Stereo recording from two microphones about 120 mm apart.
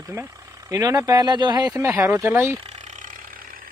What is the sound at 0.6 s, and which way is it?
Speech, 30° right (ahead or behind).